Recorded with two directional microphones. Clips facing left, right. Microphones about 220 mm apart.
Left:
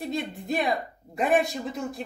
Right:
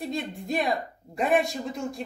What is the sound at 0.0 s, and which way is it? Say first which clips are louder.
Speech: left 1 dB; centre (ahead or behind).